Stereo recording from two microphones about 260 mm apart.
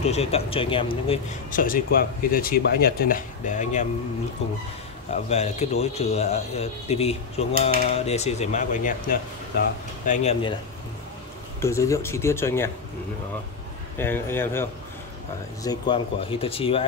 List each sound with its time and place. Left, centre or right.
0.0 s speech: left
5.1 s speech: left
11.6 s speech: centre
13.9 s speech: centre